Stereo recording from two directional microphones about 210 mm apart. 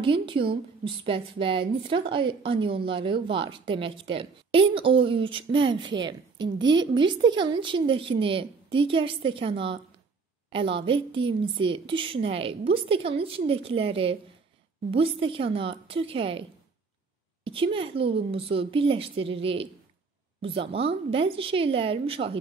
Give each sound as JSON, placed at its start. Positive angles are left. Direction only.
{"t": 0.0, "sound": "a woman's voice", "side_deg": -25}
{"t": 17.5, "sound": "a woman's voice", "side_deg": -25}
{"t": 20.7, "sound": "a woman's voice", "side_deg": -25}